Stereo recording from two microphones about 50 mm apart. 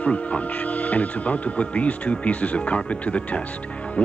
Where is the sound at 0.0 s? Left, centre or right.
Left.